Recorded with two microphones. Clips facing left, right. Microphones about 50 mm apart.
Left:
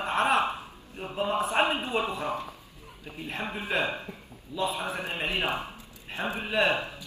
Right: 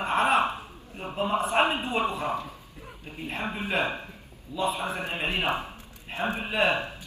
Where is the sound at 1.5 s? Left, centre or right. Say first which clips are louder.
Right 2 dB; right.